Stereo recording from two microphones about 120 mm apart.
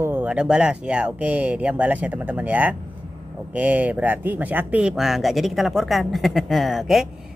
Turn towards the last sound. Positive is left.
turn(degrees=0)  # may be behind; listen again after turning